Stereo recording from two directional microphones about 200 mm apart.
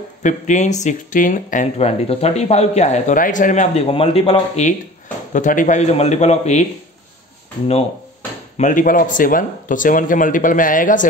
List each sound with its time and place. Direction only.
0.2 s speech: 40° left (ahead or behind)
8.5 s speech: 40° left (ahead or behind)